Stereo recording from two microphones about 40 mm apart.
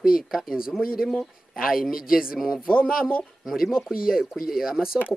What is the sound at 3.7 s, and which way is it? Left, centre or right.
Speech, centre.